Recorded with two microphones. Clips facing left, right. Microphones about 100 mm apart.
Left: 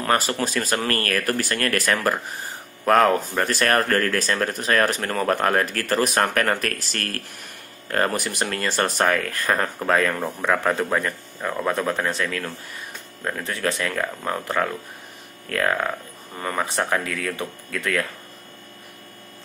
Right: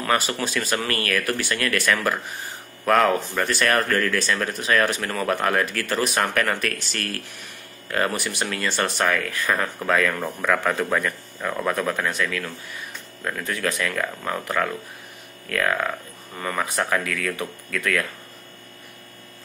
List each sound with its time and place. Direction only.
0.0 s speech: 40° left (ahead or behind)
10.1 s speech: 20° left (ahead or behind)